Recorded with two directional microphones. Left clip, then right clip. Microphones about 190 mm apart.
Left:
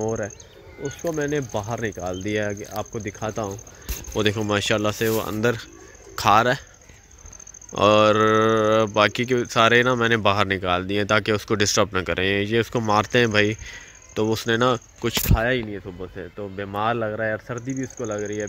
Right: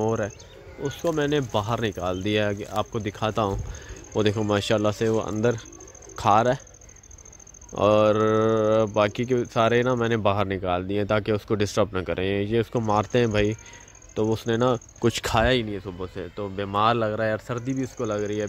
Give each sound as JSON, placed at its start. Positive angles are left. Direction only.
{"t": 0.0, "sound": "a sound", "side_deg": -10}
{"t": 1.2, "sound": "speech", "side_deg": -15}
{"t": 4.1, "sound": "speech", "side_deg": 0}
{"t": 7.7, "sound": "speech", "side_deg": 0}
{"t": 15.4, "sound": "speech", "side_deg": -20}